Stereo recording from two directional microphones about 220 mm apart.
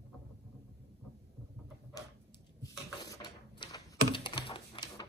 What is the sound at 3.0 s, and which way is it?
Computer keyboard, 20° left (ahead or behind).